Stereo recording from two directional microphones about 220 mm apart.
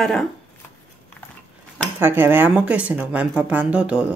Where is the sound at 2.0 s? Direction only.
10° right (ahead or behind).